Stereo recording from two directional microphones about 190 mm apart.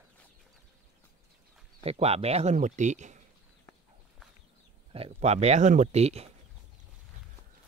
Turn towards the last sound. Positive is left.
turn(degrees=-35)  # may be behind; listen again after turning